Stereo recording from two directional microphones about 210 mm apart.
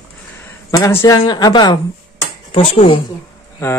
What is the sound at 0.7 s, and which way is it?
Speech, 15° left (ahead or behind).